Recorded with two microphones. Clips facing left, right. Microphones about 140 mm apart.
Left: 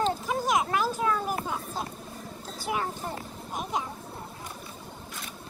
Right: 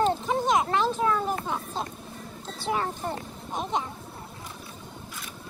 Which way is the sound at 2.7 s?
35° right (ahead or behind).